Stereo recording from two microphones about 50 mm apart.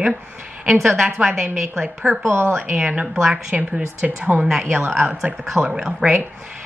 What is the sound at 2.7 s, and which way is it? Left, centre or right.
Speech, right.